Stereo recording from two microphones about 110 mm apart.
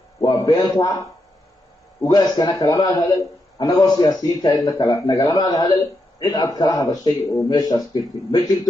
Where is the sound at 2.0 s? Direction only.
35° left (ahead or behind).